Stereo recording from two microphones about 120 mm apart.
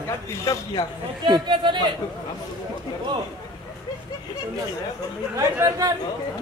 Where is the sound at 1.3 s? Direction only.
40° right (ahead or behind).